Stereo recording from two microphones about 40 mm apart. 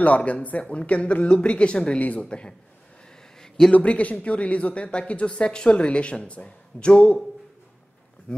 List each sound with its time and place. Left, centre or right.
0.0 s speech: left
2.0 s speech: left
2.2 s speech: left
3.3 s a sound: centre
3.7 s speech: left
8.3 s a sound: left